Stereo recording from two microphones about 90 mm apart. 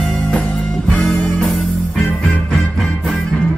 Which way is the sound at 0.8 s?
5° left (ahead or behind).